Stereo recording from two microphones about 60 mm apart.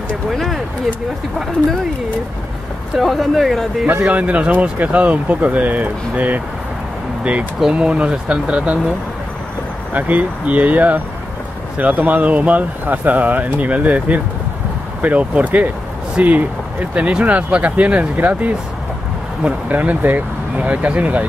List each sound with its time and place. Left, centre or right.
0.3 s speech: centre
3.0 s speech: centre
4.0 s speech: right
7.7 s speech: centre
9.9 s speech: right